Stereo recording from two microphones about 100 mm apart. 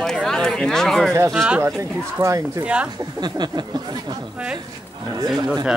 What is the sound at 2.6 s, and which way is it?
Speech, 10° right (ahead or behind).